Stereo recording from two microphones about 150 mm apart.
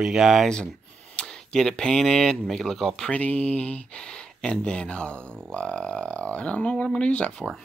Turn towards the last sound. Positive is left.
turn(degrees=5)  # may be behind; listen again after turning